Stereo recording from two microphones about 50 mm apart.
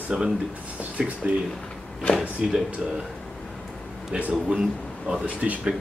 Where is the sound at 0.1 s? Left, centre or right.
Centre.